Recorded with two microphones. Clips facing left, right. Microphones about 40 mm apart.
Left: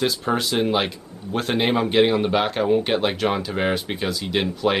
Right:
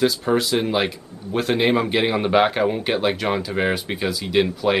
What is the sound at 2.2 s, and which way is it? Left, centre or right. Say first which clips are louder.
Speech: right 3 dB; centre.